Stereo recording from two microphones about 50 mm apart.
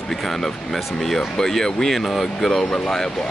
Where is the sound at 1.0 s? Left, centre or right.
Centre.